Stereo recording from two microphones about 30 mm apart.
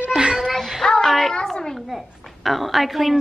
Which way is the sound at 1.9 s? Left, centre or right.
Centre.